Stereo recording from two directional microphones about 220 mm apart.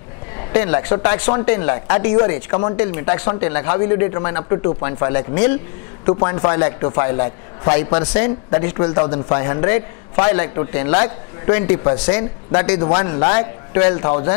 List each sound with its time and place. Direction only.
0.5 s a man's voice: 15° left (ahead or behind)